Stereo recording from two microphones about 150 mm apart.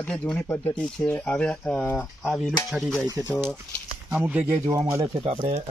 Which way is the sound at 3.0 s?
25° right (ahead or behind).